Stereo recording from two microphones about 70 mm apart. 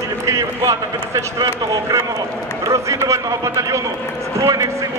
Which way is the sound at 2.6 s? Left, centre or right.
Right.